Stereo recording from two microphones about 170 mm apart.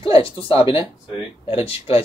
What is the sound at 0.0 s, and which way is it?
A man's voice, 30° left (ahead or behind).